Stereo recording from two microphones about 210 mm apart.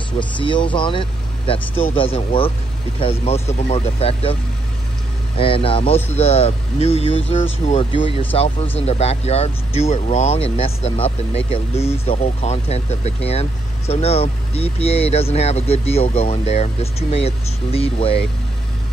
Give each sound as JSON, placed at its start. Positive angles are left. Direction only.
{"t": 0.4, "sound": "speech", "side_deg": 25}
{"t": 5.4, "sound": "speech", "side_deg": 25}